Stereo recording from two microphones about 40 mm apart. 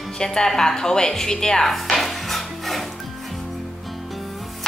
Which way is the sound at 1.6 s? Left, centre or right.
Centre.